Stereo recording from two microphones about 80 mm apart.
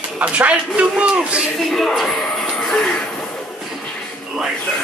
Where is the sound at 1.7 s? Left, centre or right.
Centre.